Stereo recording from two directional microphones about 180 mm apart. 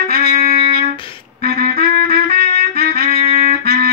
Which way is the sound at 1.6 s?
60° right (ahead or behind).